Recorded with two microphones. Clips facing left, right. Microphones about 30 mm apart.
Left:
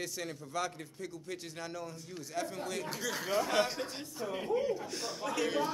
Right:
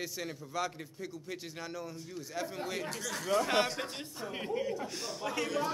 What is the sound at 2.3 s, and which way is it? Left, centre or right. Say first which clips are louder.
Speech: even; centre.